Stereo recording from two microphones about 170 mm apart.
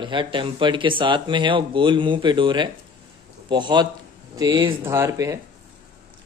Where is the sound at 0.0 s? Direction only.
30° right (ahead or behind).